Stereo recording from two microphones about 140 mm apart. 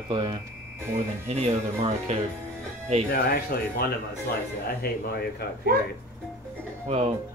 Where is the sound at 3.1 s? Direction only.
90° left.